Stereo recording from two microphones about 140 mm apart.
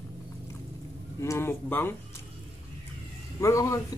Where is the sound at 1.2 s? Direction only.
20° left (ahead or behind).